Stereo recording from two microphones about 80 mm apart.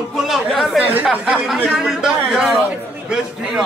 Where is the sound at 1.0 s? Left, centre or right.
Centre.